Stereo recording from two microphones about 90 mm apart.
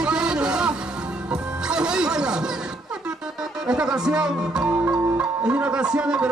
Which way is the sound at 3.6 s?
10° right (ahead or behind).